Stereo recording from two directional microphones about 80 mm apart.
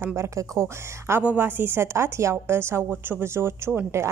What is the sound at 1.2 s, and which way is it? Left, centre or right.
A woman's voice, right.